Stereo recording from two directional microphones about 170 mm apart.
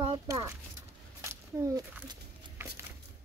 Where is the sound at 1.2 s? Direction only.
15° right (ahead or behind).